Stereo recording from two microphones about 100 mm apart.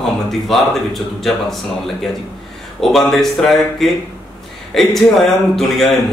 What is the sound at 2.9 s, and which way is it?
Speech, centre (ahead or behind).